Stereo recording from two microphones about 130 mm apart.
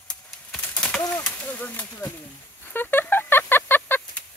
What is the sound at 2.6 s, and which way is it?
Fowl, 15° left (ahead or behind).